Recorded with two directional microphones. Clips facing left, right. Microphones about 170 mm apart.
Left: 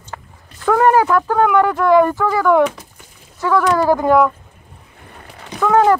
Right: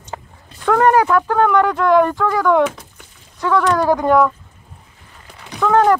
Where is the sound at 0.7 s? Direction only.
5° left (ahead or behind).